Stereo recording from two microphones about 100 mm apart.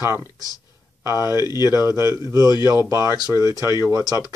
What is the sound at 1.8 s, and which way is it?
Speech, 30° right (ahead or behind).